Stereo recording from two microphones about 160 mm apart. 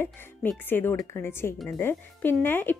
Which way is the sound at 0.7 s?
15° left (ahead or behind).